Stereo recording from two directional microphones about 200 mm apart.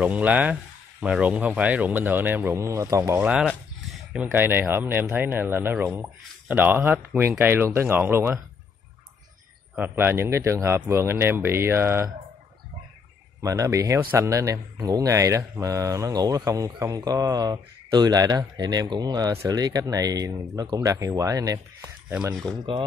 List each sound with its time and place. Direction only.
0.0 s speech: 5° right (ahead or behind)
9.8 s speech: 10° right (ahead or behind)
13.4 s speech: 15° right (ahead or behind)